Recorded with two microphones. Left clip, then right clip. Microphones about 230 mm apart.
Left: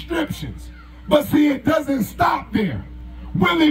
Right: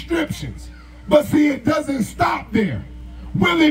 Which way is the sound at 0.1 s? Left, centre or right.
Centre.